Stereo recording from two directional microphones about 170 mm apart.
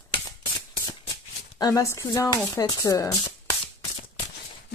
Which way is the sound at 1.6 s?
20° left (ahead or behind).